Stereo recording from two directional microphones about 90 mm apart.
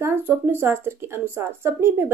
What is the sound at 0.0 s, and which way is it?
A woman's voice, 25° right (ahead or behind).